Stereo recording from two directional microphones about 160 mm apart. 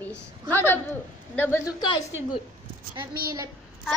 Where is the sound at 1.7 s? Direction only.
25° left (ahead or behind).